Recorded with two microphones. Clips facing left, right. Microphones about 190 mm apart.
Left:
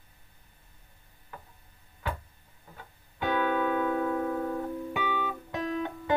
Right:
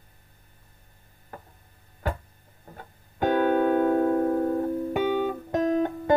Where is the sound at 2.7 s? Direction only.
45° right (ahead or behind).